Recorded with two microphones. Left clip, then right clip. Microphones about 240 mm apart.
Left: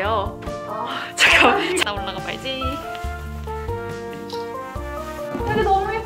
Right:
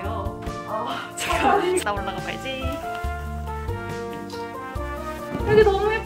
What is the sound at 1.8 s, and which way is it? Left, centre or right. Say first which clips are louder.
Speech: even; centre.